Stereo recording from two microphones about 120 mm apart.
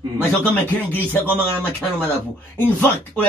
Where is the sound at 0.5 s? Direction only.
15° left (ahead or behind).